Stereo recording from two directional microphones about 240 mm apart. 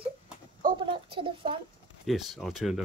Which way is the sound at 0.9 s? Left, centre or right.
Right.